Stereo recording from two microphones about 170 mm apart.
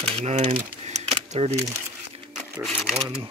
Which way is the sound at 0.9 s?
40° right (ahead or behind).